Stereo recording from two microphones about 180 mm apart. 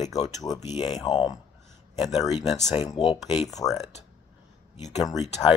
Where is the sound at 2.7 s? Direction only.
20° left (ahead or behind).